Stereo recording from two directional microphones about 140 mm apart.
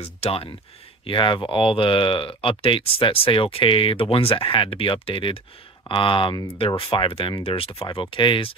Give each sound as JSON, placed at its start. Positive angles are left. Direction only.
{"t": 0.0, "sound": "speech", "side_deg": 45}